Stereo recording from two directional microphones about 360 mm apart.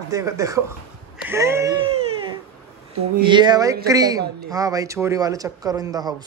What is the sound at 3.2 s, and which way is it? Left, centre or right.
Speech, centre.